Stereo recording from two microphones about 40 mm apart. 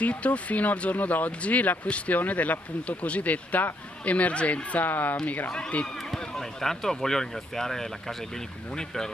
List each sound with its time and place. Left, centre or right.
0.0 s speech: left
4.7 s speech: left
6.1 s speech: centre